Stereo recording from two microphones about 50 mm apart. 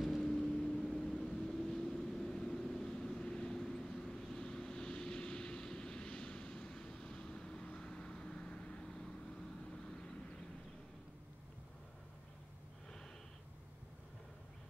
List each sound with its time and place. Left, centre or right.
0.2 s vehicle: centre